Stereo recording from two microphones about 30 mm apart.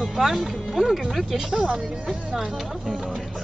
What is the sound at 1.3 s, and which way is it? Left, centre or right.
Speech, right.